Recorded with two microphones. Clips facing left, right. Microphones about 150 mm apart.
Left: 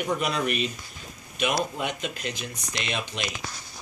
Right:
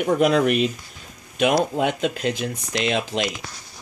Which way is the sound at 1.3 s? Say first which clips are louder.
Right 8 dB; 90° right.